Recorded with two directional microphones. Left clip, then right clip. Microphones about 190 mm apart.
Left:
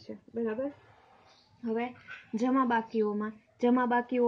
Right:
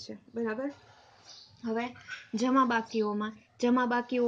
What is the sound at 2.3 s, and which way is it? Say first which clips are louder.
A woman's voice: right 1 dB; 10° left (ahead or behind).